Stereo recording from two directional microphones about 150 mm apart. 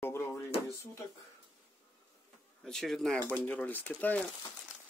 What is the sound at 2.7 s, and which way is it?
Speech, 5° left (ahead or behind).